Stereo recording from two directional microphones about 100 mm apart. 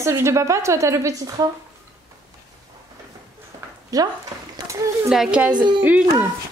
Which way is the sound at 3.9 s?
35° right (ahead or behind).